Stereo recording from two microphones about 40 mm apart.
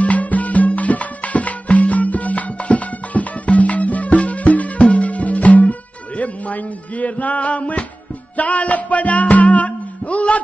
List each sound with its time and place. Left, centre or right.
0.0 s music: left